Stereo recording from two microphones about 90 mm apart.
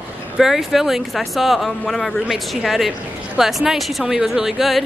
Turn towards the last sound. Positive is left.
turn(degrees=0)  # may be behind; listen again after turning